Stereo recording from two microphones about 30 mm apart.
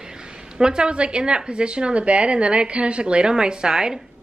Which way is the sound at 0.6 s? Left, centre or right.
Right.